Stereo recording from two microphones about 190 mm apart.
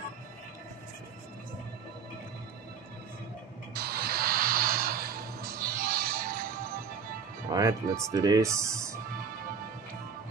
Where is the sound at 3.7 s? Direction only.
55° right (ahead or behind).